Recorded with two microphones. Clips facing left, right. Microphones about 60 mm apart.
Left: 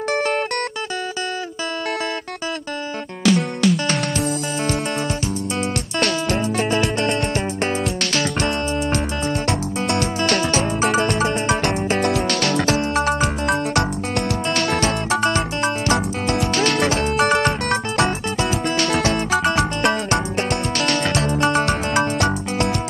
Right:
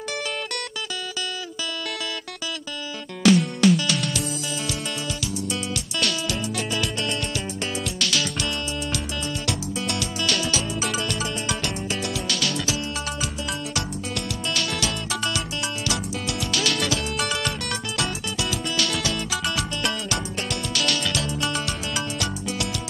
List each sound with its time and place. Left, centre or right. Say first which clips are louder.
0.1 s music: left 10 dB; left
3.8 s music: left 5 dB; left
5.9 s music: left 6 dB; left